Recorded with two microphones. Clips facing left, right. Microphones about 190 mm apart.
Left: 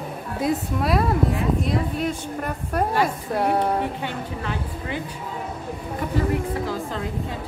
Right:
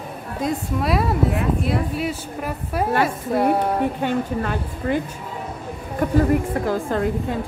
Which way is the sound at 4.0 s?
50° right (ahead or behind).